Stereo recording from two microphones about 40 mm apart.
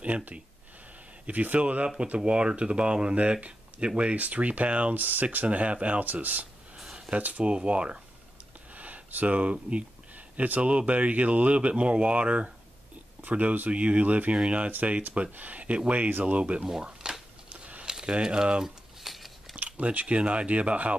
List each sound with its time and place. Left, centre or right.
0.0 s speech: right
4.9 s speech: right
7.4 s speech: right
8.7 s a sound: right
9.4 s speech: right
10.1 s a sound: right
10.7 s speech: right
16.6 s a sound: centre
18.0 s speech: right
19.0 s biting: centre
19.5 s typing: right
20.2 s speech: right